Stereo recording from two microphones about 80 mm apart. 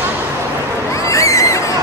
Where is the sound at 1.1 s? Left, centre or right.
Left.